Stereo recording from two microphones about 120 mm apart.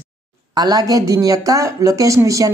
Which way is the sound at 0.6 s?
30° right (ahead or behind).